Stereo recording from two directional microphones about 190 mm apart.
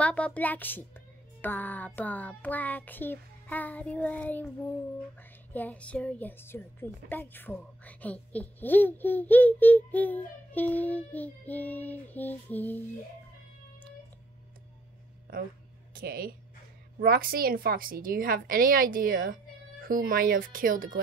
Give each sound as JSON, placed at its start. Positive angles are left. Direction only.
{"t": 0.0, "sound": "a woman's voice", "side_deg": 5}
{"t": 15.9, "sound": "a woman's voice", "side_deg": -50}